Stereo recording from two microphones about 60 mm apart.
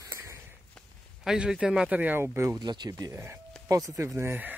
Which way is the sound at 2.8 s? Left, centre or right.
Right.